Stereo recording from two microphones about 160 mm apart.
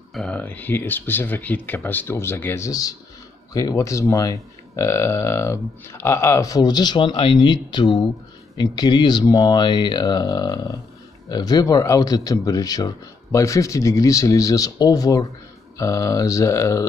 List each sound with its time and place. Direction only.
0.1 s speech: 5° left (ahead or behind)